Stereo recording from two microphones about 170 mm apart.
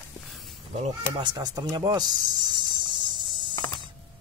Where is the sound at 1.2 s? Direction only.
25° right (ahead or behind).